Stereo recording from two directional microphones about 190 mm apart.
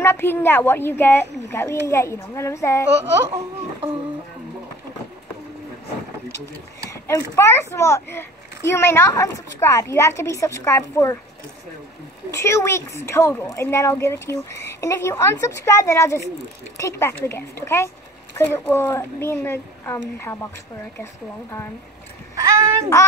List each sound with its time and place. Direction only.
0.0 s a woman's voice: 10° left (ahead or behind)
2.9 s speech: 65° right (ahead or behind)
6.9 s a sound: 15° left (ahead or behind)
7.3 s a woman's voice: 15° left (ahead or behind)
12.3 s a woman's voice: 15° left (ahead or behind)
22.3 s speech: 15° right (ahead or behind)